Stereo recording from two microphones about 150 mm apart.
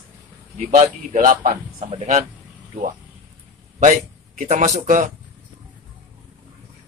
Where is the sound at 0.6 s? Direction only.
65° right (ahead or behind).